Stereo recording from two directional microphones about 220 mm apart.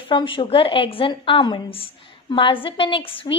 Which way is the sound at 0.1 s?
20° left (ahead or behind).